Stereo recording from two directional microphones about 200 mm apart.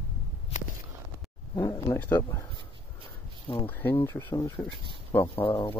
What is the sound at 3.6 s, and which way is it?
Speech, 10° left (ahead or behind).